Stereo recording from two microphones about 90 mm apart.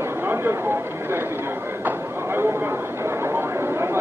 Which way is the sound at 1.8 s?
25° right (ahead or behind).